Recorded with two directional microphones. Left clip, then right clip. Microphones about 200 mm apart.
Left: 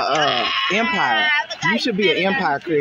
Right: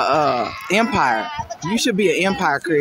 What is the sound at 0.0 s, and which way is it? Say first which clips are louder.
Bleat: right 1 dB; 20° right (ahead or behind).